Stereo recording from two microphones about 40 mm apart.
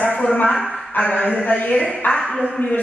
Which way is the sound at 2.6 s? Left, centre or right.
Left.